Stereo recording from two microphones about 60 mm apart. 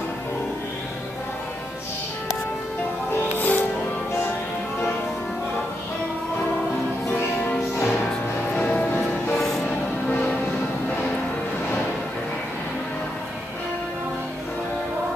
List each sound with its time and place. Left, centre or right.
3.3 s music: left
7.1 s music: left
9.4 s music: centre